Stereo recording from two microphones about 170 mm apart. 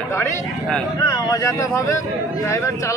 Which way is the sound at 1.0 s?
20° left (ahead or behind).